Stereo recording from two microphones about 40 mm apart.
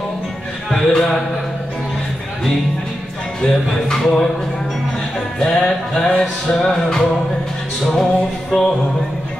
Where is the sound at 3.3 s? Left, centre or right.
Centre.